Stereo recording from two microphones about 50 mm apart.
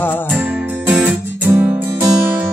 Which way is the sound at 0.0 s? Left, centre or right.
Left.